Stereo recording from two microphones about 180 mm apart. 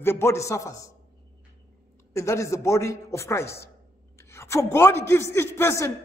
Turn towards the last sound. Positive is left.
turn(degrees=15)  # may be behind; listen again after turning